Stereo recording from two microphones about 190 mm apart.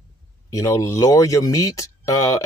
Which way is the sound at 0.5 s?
15° left (ahead or behind).